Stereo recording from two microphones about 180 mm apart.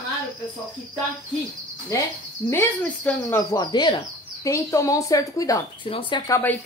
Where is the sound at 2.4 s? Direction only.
10° left (ahead or behind).